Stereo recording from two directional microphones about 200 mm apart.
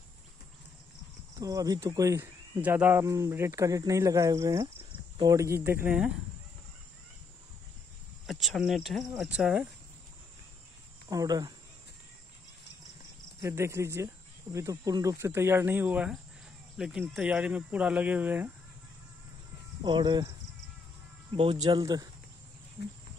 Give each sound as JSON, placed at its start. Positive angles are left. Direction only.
{"t": 1.4, "sound": "speech", "side_deg": -15}
{"t": 8.3, "sound": "speech", "side_deg": 0}
{"t": 11.1, "sound": "speech", "side_deg": -20}
{"t": 13.4, "sound": "speech", "side_deg": -15}
{"t": 19.8, "sound": "speech", "side_deg": -20}
{"t": 21.4, "sound": "speech", "side_deg": -25}